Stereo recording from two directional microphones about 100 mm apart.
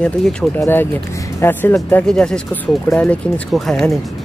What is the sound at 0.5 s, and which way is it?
Speech, 20° left (ahead or behind).